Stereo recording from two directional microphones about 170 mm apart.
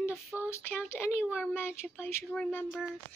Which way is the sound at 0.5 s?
15° left (ahead or behind).